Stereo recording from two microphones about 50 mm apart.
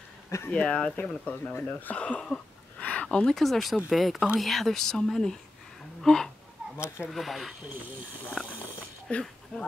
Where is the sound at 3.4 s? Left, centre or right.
Centre.